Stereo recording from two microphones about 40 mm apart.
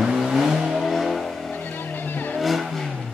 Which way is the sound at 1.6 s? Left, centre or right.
Left.